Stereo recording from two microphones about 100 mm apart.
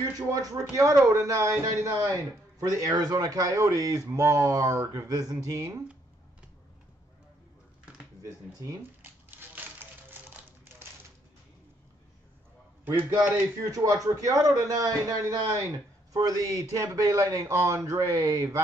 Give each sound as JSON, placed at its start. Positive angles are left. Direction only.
{"t": 0.3, "sound": "speech", "side_deg": -35}
{"t": 8.2, "sound": "speech", "side_deg": -35}
{"t": 10.0, "sound": "a sound", "side_deg": -20}
{"t": 13.6, "sound": "speech", "side_deg": -35}